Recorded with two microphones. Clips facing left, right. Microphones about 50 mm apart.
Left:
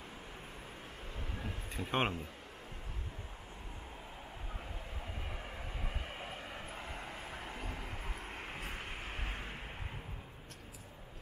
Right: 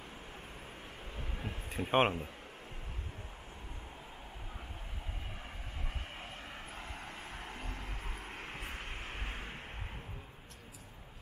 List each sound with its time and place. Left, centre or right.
1.4 s a man's voice: right
5.9 s vehicle: centre